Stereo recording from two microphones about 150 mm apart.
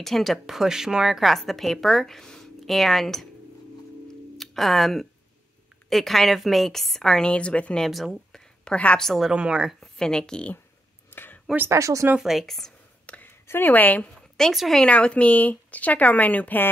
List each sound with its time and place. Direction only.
0.0 s a woman's voice: centre (ahead or behind)
4.4 s a woman's voice: centre (ahead or behind)
11.1 s a sound: 15° left (ahead or behind)
11.5 s speech: 15° right (ahead or behind)
12.2 s a woman's voice: centre (ahead or behind)